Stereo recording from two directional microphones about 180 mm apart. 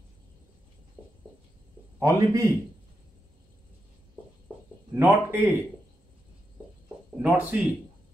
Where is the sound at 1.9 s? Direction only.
20° right (ahead or behind).